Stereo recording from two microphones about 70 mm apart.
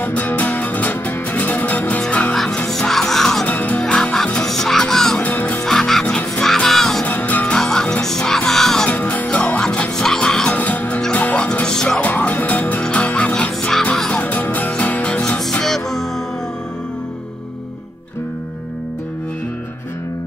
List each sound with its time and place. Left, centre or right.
0.0 s music: left
2.3 s music: centre
3.4 s music: left
3.8 s music: centre
5.2 s music: left
5.7 s music: centre
7.1 s music: left
7.5 s music: centre
8.8 s music: left
10.5 s music: left
11.6 s music: centre
12.0 s music: left
14.2 s music: left
15.2 s music: centre